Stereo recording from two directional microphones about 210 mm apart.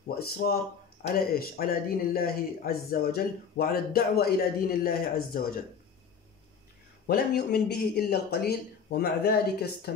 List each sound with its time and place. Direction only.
0.0 s speech: 45° left (ahead or behind)
7.1 s speech: 50° left (ahead or behind)